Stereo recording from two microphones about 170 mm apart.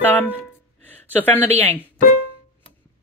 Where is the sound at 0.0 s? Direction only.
10° left (ahead or behind).